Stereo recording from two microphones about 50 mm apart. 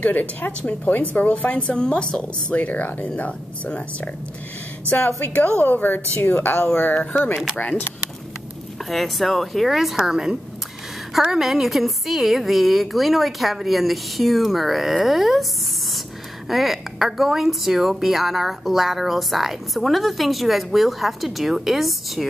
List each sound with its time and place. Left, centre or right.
0.0 s a woman's voice: left
2.5 s speech: left
4.8 s speech: left
6.9 s a woman's voice: left
8.8 s a woman's voice: centre
16.4 s a woman's voice: centre